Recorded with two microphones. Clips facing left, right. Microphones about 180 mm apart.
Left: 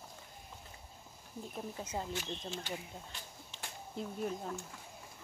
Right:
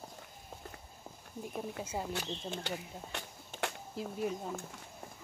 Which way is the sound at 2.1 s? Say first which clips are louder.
Right 2 dB; 70° right (ahead or behind).